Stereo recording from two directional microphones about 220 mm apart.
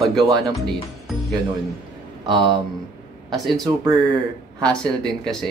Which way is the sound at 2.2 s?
20° right (ahead or behind).